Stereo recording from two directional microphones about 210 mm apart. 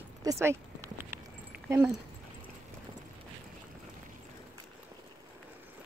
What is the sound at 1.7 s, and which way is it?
Speech, 10° right (ahead or behind).